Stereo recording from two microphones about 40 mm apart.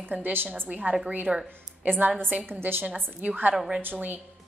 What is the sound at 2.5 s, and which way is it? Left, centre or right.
Speech, right.